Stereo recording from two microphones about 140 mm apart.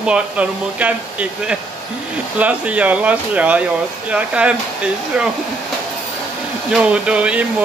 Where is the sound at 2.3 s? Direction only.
10° right (ahead or behind).